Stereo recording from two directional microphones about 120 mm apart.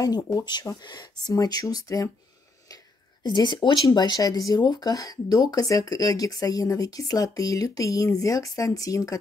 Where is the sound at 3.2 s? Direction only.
40° left (ahead or behind).